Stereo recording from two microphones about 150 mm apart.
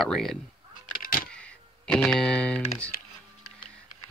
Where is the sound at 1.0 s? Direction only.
70° left (ahead or behind).